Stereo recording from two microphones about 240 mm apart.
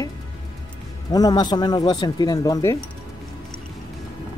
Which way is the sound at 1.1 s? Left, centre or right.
Centre.